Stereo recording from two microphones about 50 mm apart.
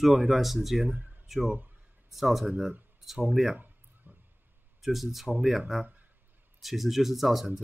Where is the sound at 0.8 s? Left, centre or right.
Right.